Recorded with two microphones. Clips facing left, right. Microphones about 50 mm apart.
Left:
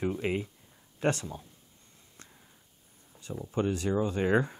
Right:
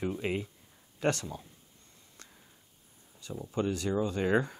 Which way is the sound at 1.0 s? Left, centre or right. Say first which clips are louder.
Left 1 dB; left.